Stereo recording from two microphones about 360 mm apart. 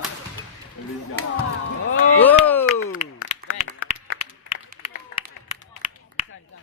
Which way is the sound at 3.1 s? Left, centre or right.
Left.